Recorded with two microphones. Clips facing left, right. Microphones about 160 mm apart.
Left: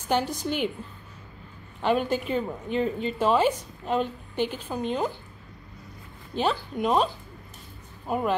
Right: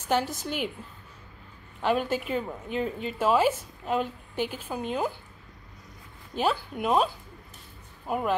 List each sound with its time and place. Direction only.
0.1 s a woman's voice: centre (ahead or behind)
1.8 s a woman's voice: centre (ahead or behind)
6.3 s a woman's voice: 5° right (ahead or behind)
8.1 s a woman's voice: 5° right (ahead or behind)